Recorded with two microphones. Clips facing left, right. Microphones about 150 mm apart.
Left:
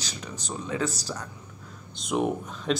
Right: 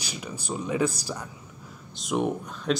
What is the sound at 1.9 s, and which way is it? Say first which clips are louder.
Speech: even; centre (ahead or behind).